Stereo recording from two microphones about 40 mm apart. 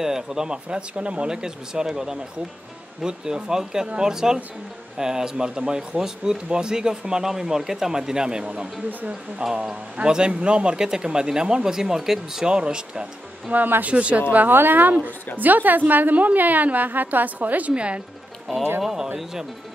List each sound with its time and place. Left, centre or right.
0.0 s speech: centre; by 1.3 s right
1.3 s speech: centre
9.4 s speech: right; by 12.4 s centre
12.4 s speech: right
13.5 s a woman's voice: right
13.8 s speech: right
14.5 s a woman's voice: right
17.7 s speech: right
18.8 s speech: centre